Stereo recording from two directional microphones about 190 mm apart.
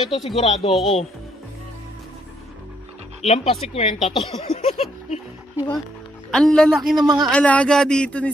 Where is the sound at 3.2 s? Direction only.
35° left (ahead or behind).